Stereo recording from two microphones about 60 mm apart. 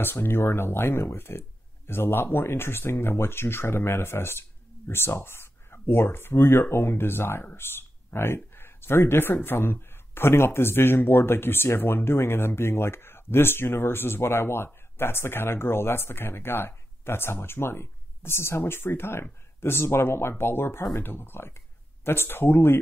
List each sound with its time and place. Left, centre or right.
0.0 s speech: left